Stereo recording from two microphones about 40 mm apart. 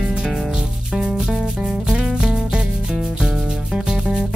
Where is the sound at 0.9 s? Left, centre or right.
Centre.